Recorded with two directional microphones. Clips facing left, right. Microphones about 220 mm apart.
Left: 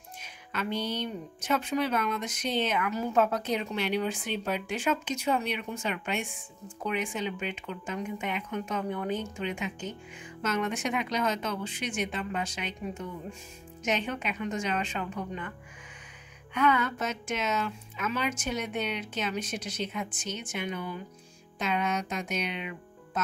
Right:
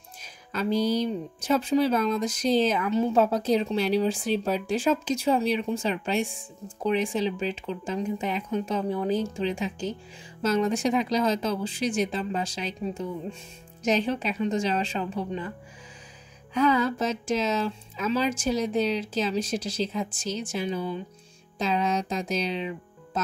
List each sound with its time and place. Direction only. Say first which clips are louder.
0.2 s speech: right 5 dB; 35° right (ahead or behind)
16.5 s speech: right 4 dB; 35° right (ahead or behind)